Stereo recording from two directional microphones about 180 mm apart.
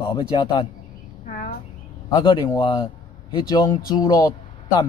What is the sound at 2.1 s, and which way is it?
Speech, 20° left (ahead or behind).